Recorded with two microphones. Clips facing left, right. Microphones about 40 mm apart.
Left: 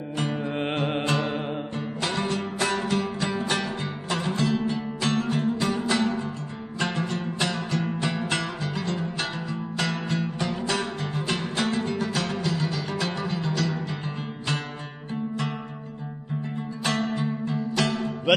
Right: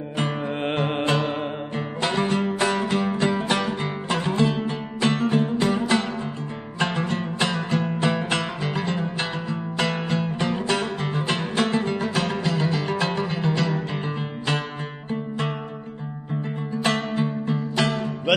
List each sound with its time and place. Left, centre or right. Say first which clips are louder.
0.2 s music: right 2 dB; right
0.5 s music: right 2 dB; centre
1.8 s music: right 6 dB; right
3.4 s music: right 4 dB; centre
6.8 s music: right 3 dB; right
16.4 s music: right 4 dB; right